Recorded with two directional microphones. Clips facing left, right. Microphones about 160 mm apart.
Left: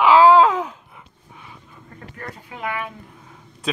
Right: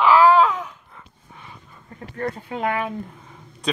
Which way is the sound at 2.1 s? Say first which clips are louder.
Right 10 dB; 35° right (ahead or behind).